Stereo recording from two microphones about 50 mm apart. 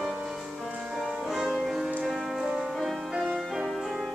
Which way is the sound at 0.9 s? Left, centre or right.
Centre.